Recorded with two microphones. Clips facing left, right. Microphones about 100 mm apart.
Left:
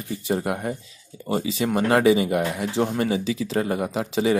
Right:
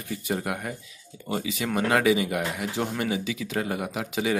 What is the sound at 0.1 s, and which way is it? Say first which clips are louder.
Speech: left 4 dB; 30° left (ahead or behind).